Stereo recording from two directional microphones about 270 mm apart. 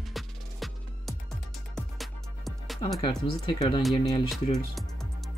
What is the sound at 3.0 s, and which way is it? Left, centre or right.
Speech, centre.